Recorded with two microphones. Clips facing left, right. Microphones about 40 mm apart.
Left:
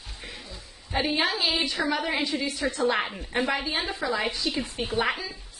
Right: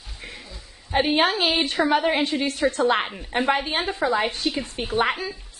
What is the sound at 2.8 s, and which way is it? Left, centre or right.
Speech, right.